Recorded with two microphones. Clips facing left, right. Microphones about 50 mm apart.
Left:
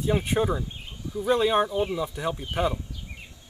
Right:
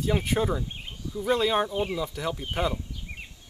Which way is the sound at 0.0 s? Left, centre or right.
Left.